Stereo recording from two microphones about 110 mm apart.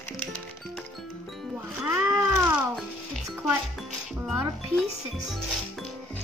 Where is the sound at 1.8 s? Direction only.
20° right (ahead or behind).